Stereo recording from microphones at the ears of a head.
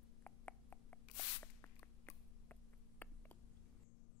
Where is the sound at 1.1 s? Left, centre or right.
Left.